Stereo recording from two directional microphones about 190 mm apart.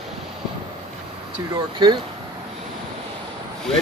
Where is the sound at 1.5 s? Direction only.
25° right (ahead or behind).